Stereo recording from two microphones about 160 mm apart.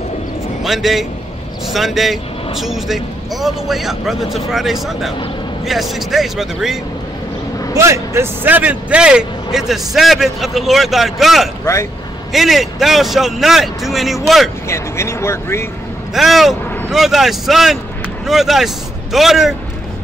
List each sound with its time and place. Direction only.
0.7 s speech: centre (ahead or behind)
7.7 s speech: 20° right (ahead or behind); by 11.4 s centre (ahead or behind)
11.6 s speech: 15° left (ahead or behind)
12.3 s speech: centre (ahead or behind)
14.7 s speech: 15° left (ahead or behind)
16.2 s speech: centre (ahead or behind)